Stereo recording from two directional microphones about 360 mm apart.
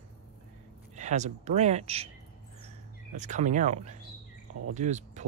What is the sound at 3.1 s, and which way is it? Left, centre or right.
Speech, centre.